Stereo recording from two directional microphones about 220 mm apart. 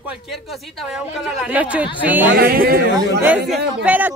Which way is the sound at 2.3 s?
45° right (ahead or behind).